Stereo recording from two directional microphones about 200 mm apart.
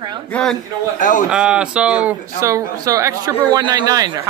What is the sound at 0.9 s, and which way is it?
Speech, 40° left (ahead or behind).